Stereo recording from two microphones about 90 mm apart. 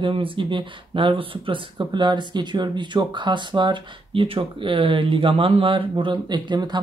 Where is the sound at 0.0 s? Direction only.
75° right (ahead or behind).